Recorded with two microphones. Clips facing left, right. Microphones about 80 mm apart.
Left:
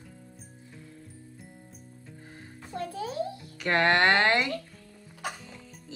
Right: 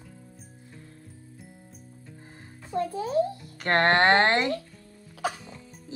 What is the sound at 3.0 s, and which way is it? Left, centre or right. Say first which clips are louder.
A child's voice: right 7 dB; right.